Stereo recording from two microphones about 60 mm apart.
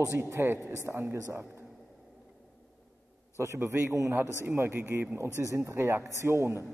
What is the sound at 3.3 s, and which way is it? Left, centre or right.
A man's voice, right.